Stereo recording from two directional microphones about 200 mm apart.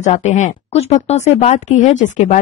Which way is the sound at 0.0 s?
35° left (ahead or behind).